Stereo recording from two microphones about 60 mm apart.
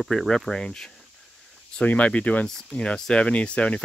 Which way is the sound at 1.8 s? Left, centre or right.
Left.